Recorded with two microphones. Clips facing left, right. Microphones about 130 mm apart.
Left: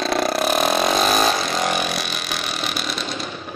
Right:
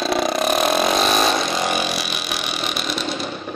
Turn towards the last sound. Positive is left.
turn(degrees=0)  # may be behind; listen again after turning